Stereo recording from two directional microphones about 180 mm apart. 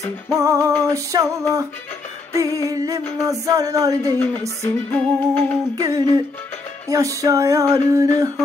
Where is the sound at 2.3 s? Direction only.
20° right (ahead or behind).